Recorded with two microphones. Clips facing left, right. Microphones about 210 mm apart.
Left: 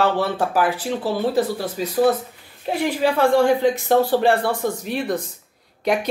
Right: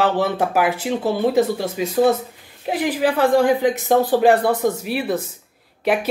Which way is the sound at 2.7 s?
15° right (ahead or behind).